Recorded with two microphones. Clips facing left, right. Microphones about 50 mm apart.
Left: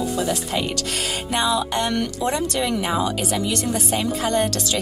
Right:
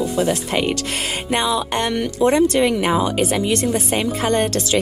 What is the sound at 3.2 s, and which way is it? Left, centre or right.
Speech, right.